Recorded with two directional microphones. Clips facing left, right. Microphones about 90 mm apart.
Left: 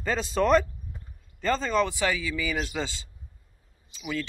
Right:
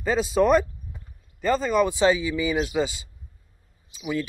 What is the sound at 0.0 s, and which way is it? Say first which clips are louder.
Speech: right 4 dB; 10° right (ahead or behind).